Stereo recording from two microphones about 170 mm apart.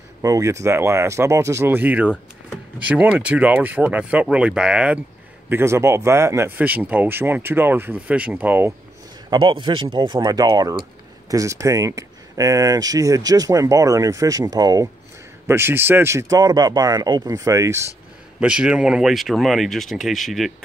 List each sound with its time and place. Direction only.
0.2 s speech: 20° right (ahead or behind)
9.3 s speech: 25° right (ahead or behind)
18.4 s speech: 5° right (ahead or behind)